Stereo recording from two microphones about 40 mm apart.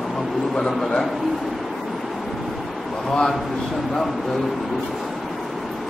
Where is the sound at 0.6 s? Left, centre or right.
Centre.